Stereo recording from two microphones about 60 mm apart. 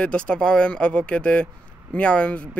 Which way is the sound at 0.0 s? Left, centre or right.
Centre.